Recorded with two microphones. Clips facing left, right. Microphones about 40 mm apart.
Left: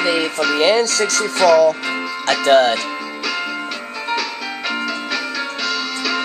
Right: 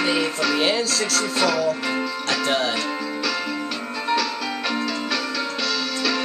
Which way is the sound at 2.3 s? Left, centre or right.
Left.